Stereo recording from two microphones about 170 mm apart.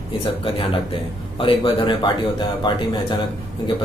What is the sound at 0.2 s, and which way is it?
A man's voice, 35° left (ahead or behind).